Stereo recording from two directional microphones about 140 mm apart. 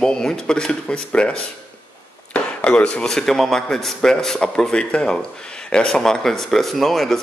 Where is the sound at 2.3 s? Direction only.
10° left (ahead or behind).